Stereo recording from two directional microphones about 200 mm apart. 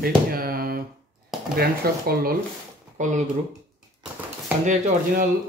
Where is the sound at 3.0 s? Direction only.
40° right (ahead or behind).